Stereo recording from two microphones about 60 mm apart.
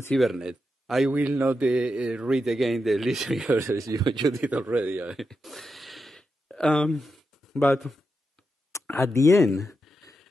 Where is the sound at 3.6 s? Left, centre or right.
Right.